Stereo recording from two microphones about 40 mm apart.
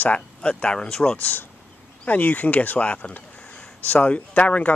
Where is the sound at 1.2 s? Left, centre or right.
Left.